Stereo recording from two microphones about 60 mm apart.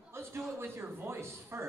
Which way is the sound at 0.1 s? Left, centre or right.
Right.